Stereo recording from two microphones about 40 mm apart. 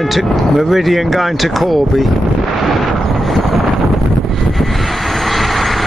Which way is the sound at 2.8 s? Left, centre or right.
Centre.